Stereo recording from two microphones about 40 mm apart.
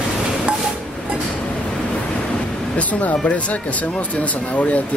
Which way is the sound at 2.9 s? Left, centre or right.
Left.